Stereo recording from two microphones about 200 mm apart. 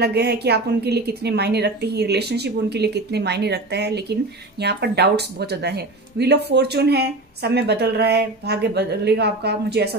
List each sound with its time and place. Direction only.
0.0 s speech: 55° right (ahead or behind)